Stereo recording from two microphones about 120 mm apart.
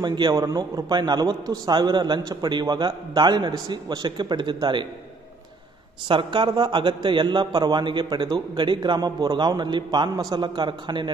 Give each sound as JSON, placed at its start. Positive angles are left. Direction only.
{"t": 0.0, "sound": "a man's voice", "side_deg": -35}
{"t": 6.0, "sound": "a man's voice", "side_deg": -45}